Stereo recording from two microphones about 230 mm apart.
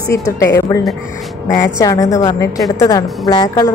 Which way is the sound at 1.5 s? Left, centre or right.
Centre.